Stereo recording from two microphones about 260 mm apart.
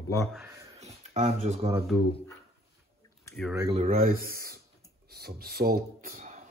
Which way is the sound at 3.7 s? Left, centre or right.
Right.